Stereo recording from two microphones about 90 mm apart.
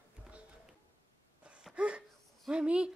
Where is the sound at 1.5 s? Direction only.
10° right (ahead or behind).